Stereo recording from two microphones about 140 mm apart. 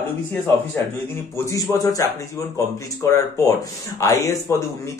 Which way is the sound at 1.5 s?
25° left (ahead or behind).